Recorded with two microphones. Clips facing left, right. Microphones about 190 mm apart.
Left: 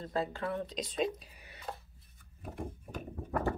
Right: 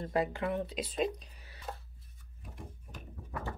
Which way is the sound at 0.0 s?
15° right (ahead or behind).